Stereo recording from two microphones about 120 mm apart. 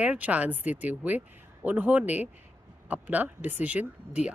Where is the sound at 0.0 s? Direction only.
10° right (ahead or behind).